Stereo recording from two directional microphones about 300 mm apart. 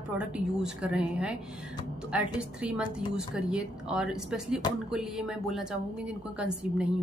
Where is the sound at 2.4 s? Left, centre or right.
Centre.